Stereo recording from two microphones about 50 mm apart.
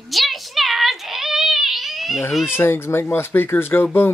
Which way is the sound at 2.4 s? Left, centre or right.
Left.